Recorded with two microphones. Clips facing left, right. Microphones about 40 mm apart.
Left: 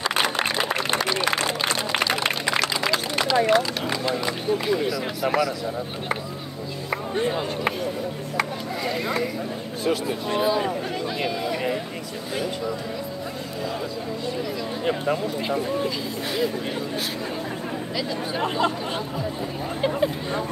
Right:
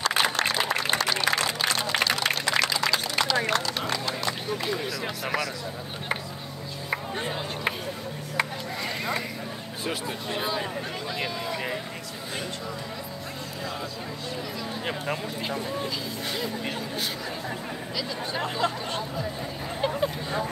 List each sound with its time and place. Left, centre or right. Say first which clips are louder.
0.0 s applause: left 1 dB; centre
0.9 s a sound: left 2 dB; centre
1.3 s a sound: left 2 dB; left
3.2 s speech: left 8 dB; centre
6.9 s speech: left 5 dB; centre
8.8 s speech: left 5 dB; centre
14.9 s speech: left 8 dB; centre
19.8 s speech: left 3 dB; centre